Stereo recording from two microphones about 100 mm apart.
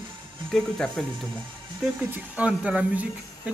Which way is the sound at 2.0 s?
15° right (ahead or behind).